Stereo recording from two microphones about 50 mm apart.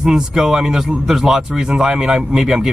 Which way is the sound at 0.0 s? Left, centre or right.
Centre.